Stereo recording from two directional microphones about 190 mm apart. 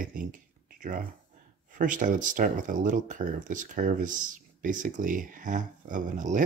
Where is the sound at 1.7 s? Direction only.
45° right (ahead or behind).